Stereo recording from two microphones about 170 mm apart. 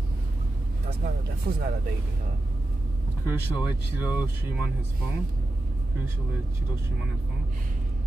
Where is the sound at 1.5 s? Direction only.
60° right (ahead or behind).